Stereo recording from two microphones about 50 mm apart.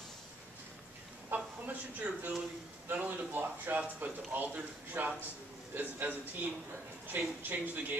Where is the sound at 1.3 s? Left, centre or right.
Right.